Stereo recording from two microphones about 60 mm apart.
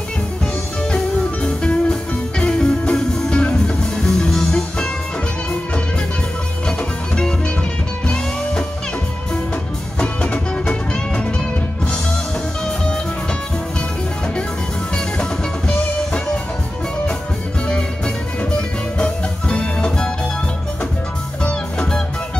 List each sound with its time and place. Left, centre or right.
0.9 s music: centre
6.8 s music: centre
9.9 s music: centre
17.6 s music: centre
21.4 s music: centre